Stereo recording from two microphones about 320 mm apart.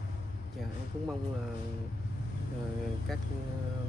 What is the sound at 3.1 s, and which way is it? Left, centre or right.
Speech, centre.